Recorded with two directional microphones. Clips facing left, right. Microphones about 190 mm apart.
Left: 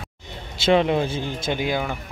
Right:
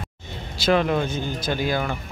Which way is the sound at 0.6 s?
25° left (ahead or behind).